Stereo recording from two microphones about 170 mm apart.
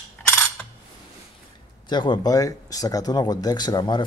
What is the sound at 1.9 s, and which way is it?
Speech, 25° left (ahead or behind).